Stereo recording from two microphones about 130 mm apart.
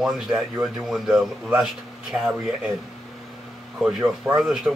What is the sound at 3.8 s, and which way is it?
Speech, 5° right (ahead or behind).